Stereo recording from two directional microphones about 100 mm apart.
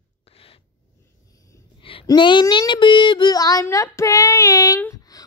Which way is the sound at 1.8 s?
60° left (ahead or behind).